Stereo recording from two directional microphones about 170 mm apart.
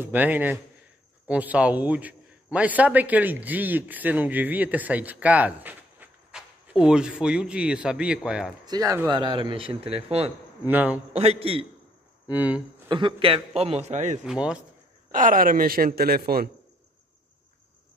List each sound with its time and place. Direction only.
0.0 s a man's voice: 10° right (ahead or behind)
8.6 s a man's voice: 20° right (ahead or behind); by 10.3 s 35° right (ahead or behind)
10.7 s a man's voice: 10° right (ahead or behind)
11.1 s a man's voice: 35° right (ahead or behind)
12.3 s a man's voice: 10° right (ahead or behind)
12.8 s a man's voice: 30° right (ahead or behind); by 14.2 s 45° right (ahead or behind)
14.2 s speech: 5° right (ahead or behind)
15.0 s speech: 55° right (ahead or behind)